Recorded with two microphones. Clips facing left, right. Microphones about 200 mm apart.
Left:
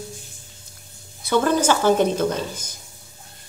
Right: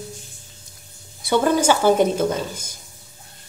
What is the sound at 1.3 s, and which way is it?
Speech, 10° right (ahead or behind).